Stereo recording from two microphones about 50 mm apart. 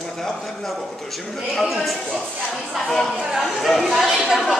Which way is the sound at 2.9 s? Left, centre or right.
Centre.